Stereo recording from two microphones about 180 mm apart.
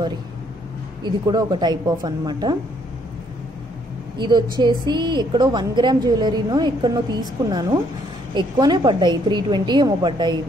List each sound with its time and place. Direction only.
1.0 s a woman's voice: 25° right (ahead or behind)
4.2 s a woman's voice: 25° right (ahead or behind)